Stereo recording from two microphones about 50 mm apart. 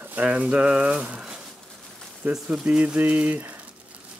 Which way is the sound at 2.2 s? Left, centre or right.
Right.